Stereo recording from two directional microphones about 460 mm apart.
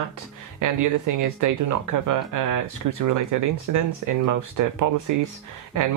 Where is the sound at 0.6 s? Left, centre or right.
Right.